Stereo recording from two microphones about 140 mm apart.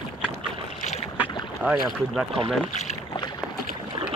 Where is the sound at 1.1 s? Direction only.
10° right (ahead or behind).